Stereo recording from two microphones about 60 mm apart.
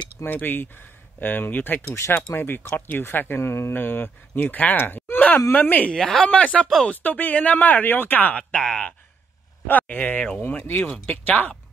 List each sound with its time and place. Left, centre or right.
0.2 s speech: left
2.0 s speech: left
2.3 s speech: left
3.7 s speech: left
5.9 s speech: centre
9.7 s speech: left
11.2 s speech: left